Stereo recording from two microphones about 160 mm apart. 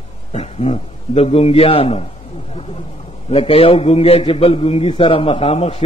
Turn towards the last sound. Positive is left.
turn(degrees=40)  # may be behind; listen again after turning